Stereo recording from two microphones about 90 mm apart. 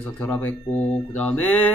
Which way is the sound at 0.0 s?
20° left (ahead or behind).